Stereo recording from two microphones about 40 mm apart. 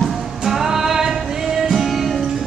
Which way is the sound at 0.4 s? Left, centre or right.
Centre.